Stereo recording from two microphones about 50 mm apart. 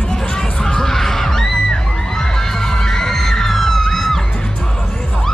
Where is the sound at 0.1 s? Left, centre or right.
Centre.